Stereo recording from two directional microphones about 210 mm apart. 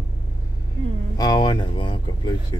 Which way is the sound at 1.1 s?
20° left (ahead or behind).